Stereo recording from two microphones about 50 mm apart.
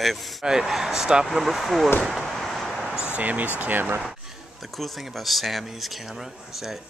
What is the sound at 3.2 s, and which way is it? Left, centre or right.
Speech, right.